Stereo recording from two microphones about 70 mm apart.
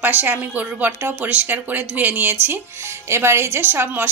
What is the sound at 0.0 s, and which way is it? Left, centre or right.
A woman's voice, right.